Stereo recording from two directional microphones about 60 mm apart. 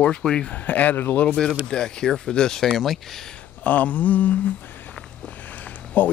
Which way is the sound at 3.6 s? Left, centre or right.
Left.